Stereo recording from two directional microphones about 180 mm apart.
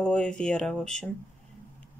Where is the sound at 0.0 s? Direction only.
5° left (ahead or behind).